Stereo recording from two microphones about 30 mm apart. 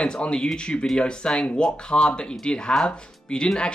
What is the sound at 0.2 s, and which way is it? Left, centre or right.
Speech, left.